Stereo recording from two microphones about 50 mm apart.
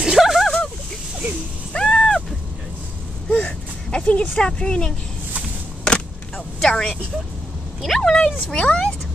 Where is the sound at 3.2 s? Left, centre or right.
Left.